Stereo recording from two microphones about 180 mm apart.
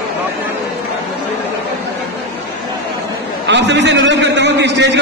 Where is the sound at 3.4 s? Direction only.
80° right.